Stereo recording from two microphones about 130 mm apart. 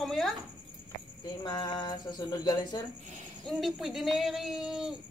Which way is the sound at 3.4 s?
Centre (ahead or behind).